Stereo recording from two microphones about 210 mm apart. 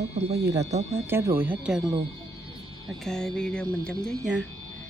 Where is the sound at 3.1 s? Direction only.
Centre (ahead or behind).